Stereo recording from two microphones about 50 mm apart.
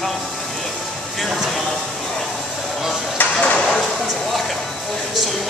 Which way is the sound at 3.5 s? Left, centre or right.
Centre.